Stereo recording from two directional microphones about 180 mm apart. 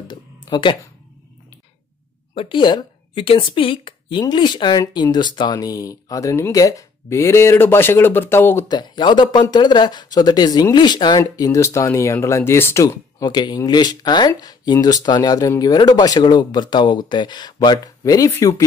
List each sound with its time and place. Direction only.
0.5 s speech: 25° left (ahead or behind)
2.3 s speech: 25° left (ahead or behind)